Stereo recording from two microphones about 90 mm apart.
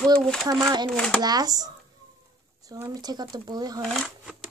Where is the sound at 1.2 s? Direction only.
45° right (ahead or behind).